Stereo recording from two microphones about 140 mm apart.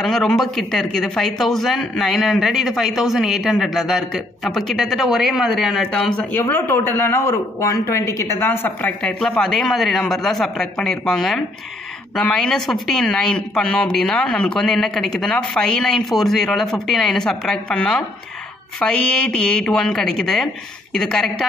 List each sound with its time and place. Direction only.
0.0 s a man's voice: centre (ahead or behind)
9.3 s speech: 5° left (ahead or behind)